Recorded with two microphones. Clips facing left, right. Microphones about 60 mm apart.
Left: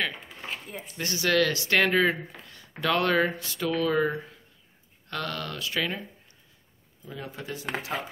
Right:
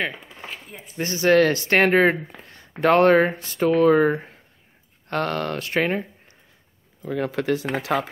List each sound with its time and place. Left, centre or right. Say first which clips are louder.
0.9 s speech: right 7 dB; right
7.0 s speech: right 13 dB; right